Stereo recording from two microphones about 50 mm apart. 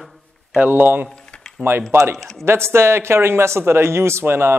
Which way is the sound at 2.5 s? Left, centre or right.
Right.